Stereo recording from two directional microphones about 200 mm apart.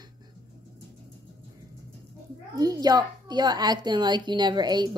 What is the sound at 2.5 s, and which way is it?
A child's voice, 20° right (ahead or behind).